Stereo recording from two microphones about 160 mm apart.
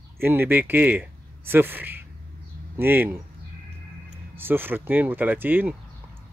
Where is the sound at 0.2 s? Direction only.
10° right (ahead or behind).